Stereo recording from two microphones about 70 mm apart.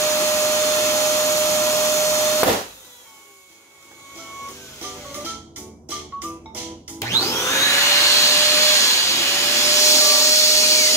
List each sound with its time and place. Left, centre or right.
0.1 s vacuum cleaner: left
5.2 s music: right
7.0 s vacuum cleaner: left